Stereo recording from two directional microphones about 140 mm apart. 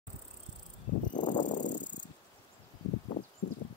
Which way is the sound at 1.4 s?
65° left (ahead or behind).